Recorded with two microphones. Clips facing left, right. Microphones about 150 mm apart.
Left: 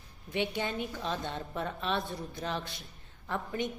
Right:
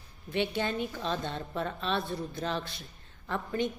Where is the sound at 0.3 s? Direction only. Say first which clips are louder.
Right 2 dB; 15° left (ahead or behind).